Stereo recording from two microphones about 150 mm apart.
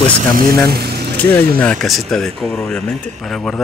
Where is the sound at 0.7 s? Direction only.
90° right.